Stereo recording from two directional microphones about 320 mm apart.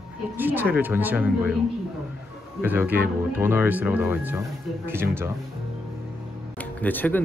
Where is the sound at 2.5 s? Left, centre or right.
Centre.